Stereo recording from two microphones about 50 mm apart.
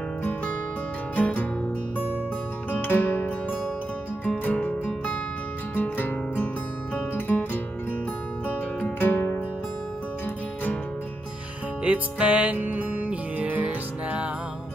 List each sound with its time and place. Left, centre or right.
0.2 s music: left
2.7 s music: left
11.8 s music: right